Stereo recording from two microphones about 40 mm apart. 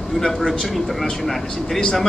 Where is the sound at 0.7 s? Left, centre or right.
Centre.